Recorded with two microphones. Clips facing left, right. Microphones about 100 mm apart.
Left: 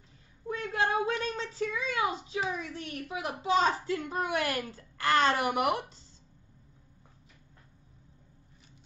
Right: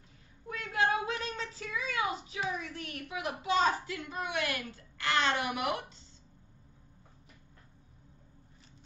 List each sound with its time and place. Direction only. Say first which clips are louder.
0.5 s speech: left 1 dB; 30° left (ahead or behind)